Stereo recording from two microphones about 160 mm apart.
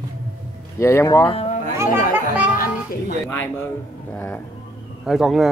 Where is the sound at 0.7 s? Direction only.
15° left (ahead or behind).